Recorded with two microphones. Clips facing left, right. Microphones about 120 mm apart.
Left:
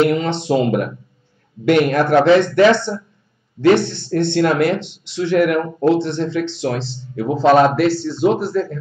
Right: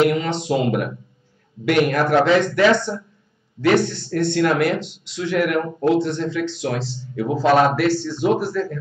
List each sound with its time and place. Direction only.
0.1 s speech: 30° left (ahead or behind)